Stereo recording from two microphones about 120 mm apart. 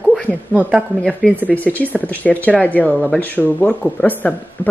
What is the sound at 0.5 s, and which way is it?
Speech, 10° right (ahead or behind).